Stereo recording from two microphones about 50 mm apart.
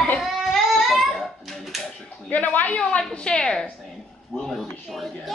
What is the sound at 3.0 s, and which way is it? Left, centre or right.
Speech, centre.